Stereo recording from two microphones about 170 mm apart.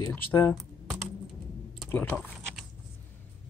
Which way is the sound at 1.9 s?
10° left (ahead or behind).